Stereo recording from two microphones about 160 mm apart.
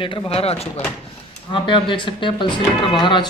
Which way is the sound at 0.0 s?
35° left (ahead or behind).